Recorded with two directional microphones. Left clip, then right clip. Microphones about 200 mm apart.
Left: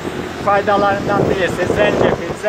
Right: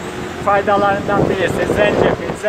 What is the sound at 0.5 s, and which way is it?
Speech, 20° right (ahead or behind).